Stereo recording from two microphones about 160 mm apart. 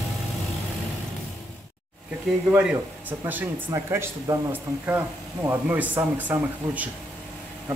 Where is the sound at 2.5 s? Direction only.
10° right (ahead or behind).